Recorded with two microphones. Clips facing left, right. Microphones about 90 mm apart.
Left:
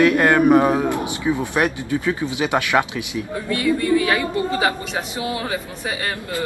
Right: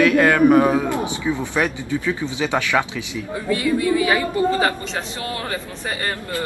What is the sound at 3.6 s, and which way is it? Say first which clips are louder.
Speech: left 2 dB; 5° right (ahead or behind).